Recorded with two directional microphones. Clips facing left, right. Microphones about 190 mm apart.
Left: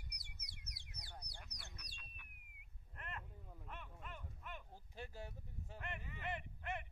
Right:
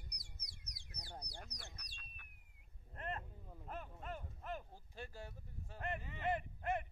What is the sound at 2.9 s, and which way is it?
Speech, 35° right (ahead or behind).